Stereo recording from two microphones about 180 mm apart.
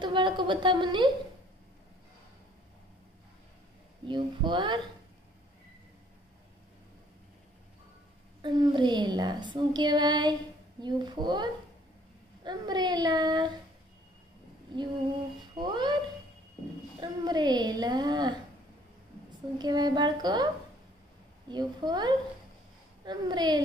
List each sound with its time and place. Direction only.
0.0 s a child's voice: 25° right (ahead or behind)
4.0 s a child's voice: 25° right (ahead or behind)
8.4 s a child's voice: 25° right (ahead or behind)
15.5 s a child's voice: 25° right (ahead or behind)
17.0 s a child's voice: 25° right (ahead or behind)
19.6 s a child's voice: 25° right (ahead or behind)
21.5 s a child's voice: 25° right (ahead or behind)